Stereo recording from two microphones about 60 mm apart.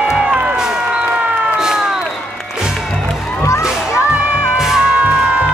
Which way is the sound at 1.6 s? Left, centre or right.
Centre.